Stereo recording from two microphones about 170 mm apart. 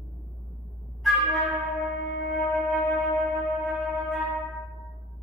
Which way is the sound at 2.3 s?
Centre (ahead or behind).